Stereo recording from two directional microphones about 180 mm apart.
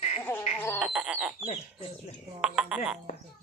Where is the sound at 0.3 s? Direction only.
15° left (ahead or behind).